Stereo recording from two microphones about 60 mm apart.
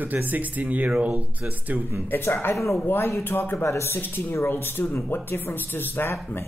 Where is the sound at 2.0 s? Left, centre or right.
Left.